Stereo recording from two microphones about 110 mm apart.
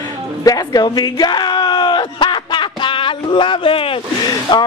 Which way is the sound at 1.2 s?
40° left (ahead or behind).